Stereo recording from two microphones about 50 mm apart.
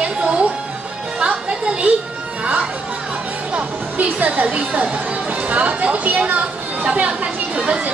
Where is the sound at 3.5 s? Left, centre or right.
Right.